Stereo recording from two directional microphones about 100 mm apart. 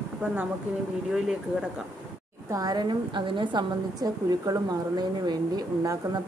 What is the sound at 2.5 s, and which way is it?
A woman's voice, 45° right (ahead or behind).